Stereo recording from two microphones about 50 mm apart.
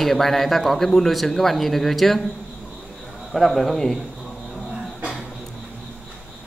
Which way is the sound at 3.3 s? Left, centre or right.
Centre.